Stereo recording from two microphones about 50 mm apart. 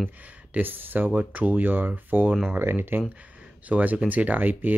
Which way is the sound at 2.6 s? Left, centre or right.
Right.